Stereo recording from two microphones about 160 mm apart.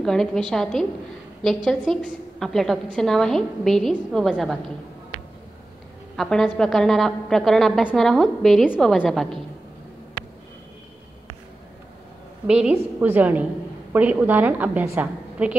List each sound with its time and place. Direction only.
0.0 s a woman's voice: 5° left (ahead or behind)
6.1 s a woman's voice: 5° left (ahead or behind)
12.4 s a woman's voice: 10° right (ahead or behind)